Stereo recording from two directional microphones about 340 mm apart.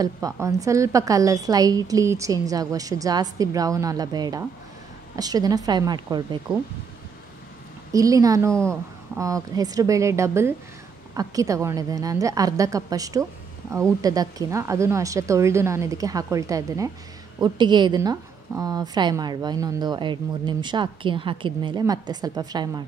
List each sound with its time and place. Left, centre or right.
0.0 s a woman's voice: centre
7.9 s a woman's voice: centre